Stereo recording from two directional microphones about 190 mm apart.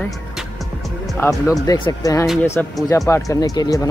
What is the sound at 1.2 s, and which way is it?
Speech, 20° left (ahead or behind).